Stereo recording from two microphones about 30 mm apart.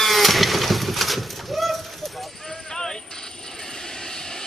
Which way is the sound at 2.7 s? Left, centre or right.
Left.